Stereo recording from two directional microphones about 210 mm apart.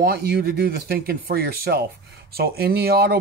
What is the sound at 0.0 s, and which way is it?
Speech, 50° right (ahead or behind).